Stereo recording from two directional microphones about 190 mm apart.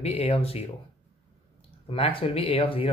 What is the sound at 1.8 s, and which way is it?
Speech, 30° left (ahead or behind).